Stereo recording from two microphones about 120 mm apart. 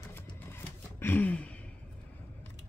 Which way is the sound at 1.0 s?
15° left (ahead or behind).